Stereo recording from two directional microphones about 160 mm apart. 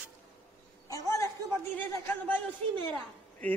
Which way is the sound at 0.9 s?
20° left (ahead or behind).